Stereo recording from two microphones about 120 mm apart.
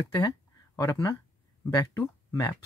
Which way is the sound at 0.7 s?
25° left (ahead or behind).